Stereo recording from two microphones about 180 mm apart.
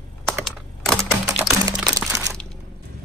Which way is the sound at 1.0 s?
15° right (ahead or behind).